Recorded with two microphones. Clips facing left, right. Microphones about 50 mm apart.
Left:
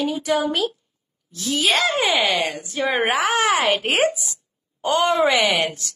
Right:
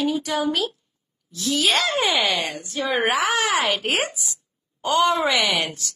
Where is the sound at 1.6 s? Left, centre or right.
Centre.